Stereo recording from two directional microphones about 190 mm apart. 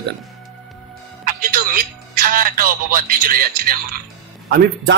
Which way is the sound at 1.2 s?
50° right (ahead or behind).